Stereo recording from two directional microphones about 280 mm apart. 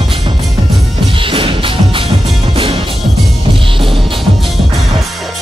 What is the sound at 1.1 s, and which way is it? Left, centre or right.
Music, centre.